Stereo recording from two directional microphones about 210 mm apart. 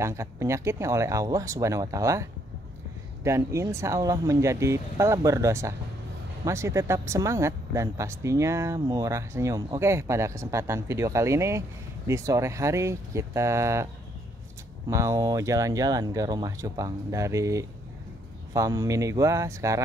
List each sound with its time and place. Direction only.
0.0 s speech: 15° right (ahead or behind)
3.3 s speech: 15° right (ahead or behind)
14.9 s speech: 15° right (ahead or behind)